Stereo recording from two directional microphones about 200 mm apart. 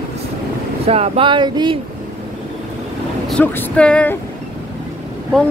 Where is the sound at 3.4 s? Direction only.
5° left (ahead or behind).